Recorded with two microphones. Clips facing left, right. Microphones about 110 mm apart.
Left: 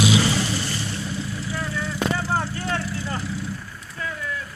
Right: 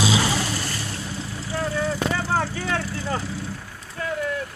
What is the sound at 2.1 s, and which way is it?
Vehicle, 90° right.